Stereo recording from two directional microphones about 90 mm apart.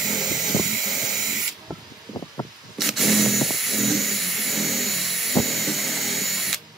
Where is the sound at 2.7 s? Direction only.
Centre (ahead or behind).